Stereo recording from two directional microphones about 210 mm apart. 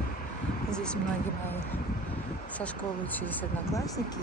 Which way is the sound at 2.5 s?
5° left (ahead or behind).